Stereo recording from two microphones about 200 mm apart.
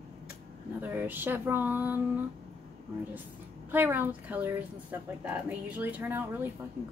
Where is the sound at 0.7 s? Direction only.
10° right (ahead or behind).